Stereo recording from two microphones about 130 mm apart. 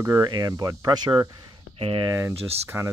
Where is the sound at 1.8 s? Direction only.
40° right (ahead or behind).